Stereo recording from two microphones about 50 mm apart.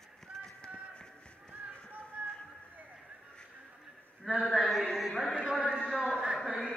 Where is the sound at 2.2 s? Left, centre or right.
Right.